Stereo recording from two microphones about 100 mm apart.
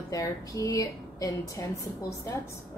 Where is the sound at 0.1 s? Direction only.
35° left (ahead or behind).